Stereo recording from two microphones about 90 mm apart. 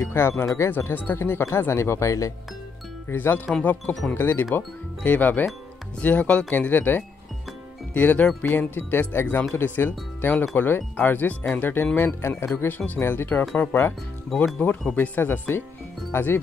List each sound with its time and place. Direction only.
0.0 s speech: 25° left (ahead or behind)
3.1 s speech: 25° left (ahead or behind)